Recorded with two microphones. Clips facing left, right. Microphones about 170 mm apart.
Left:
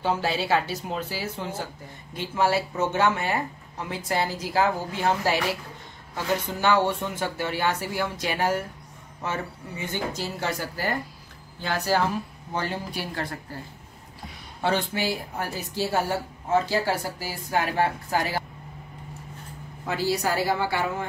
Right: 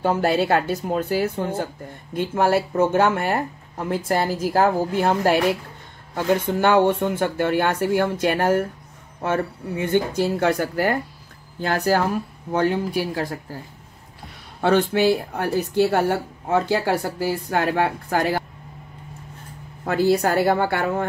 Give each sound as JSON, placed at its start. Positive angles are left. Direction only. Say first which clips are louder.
{"t": 0.0, "sound": "speech", "louder": "right 6 dB", "side_deg": -55}
{"t": 14.6, "sound": "speech", "louder": "right 8 dB", "side_deg": -60}
{"t": 19.8, "sound": "speech", "louder": "right 7 dB", "side_deg": -55}